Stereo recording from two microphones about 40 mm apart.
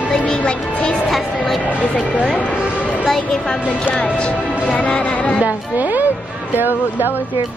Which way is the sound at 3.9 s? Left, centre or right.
Left.